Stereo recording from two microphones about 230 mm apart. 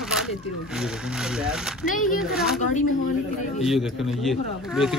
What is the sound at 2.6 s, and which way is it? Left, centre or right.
Speech, left.